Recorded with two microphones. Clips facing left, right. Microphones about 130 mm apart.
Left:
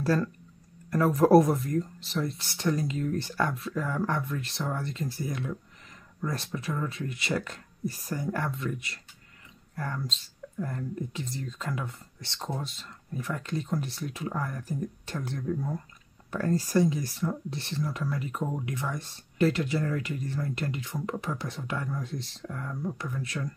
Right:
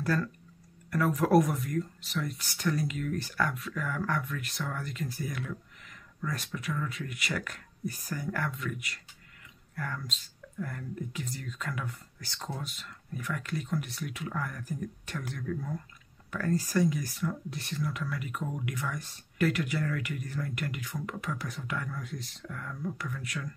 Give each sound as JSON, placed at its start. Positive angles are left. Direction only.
{"t": 0.0, "sound": "speech", "side_deg": 30}